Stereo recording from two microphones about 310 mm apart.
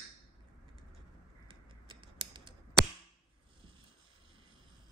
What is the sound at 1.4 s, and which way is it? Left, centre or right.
Scissors, centre.